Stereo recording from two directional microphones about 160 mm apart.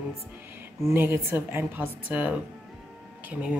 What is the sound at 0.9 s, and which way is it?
A woman's voice, 15° right (ahead or behind).